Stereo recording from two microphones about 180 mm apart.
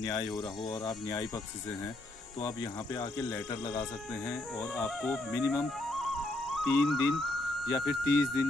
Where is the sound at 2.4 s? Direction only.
20° left (ahead or behind).